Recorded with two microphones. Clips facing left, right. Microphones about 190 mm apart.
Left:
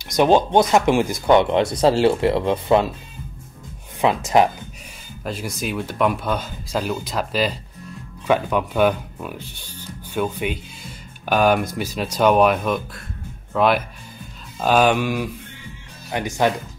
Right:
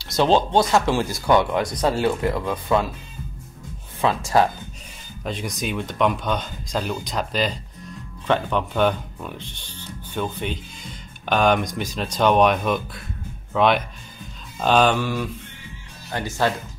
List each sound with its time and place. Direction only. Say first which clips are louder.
0.0 s speech: left 3 dB; 15° left (ahead or behind)
4.0 s speech: left 2 dB; 20° left (ahead or behind)
5.2 s speech: left 1 dB; 5° left (ahead or behind)